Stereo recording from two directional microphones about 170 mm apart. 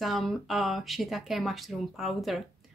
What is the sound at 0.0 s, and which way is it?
A woman's voice, centre (ahead or behind).